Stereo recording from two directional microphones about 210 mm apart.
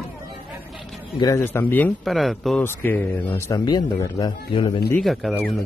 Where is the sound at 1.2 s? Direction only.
10° left (ahead or behind).